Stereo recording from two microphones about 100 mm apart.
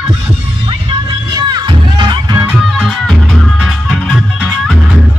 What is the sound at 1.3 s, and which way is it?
Music, 45° right (ahead or behind).